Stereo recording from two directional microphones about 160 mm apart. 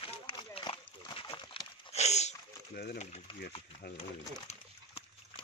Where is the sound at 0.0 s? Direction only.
30° left (ahead or behind).